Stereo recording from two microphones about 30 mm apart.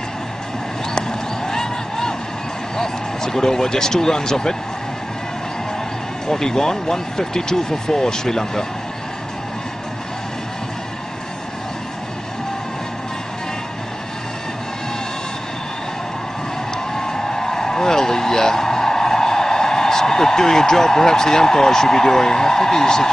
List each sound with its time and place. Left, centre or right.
2.8 s speech: centre
6.2 s speech: centre
16.9 s vehicle: centre
20.2 s a man's voice: centre